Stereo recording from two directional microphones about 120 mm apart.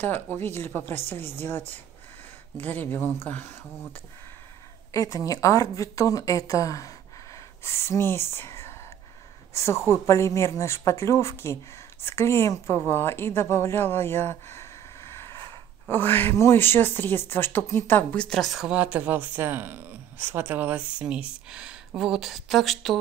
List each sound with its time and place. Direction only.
0.0 s a woman's voice: 20° left (ahead or behind)
2.5 s speech: 15° left (ahead or behind)
4.9 s speech: 30° left (ahead or behind)
9.8 s a woman's voice: 25° left (ahead or behind); by 22.9 s centre (ahead or behind)